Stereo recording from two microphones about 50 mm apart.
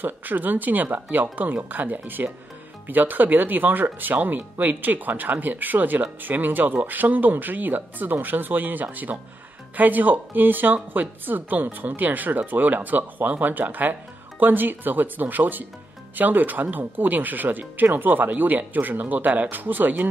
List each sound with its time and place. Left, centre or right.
0.0 s speech: right